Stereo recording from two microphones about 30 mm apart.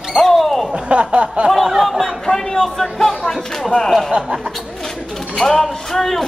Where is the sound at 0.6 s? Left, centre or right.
Right.